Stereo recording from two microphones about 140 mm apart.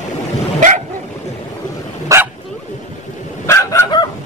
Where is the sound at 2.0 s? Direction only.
20° right (ahead or behind).